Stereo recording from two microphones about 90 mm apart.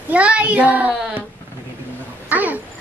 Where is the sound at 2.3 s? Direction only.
20° right (ahead or behind).